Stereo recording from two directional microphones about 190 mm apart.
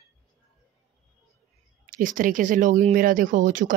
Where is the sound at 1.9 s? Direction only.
45° right (ahead or behind).